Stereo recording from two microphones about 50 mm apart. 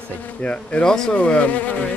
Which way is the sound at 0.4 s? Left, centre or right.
Left.